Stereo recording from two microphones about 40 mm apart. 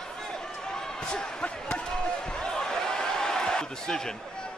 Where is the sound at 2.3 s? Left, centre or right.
Centre.